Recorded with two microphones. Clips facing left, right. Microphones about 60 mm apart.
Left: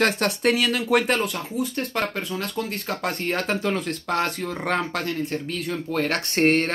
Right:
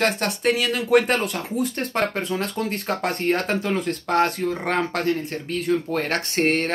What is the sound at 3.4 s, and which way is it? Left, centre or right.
Speech, centre.